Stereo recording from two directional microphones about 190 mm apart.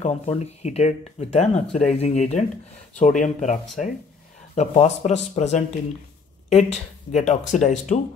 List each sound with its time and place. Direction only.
0.0 s speech: 35° left (ahead or behind)
4.6 s speech: 35° left (ahead or behind)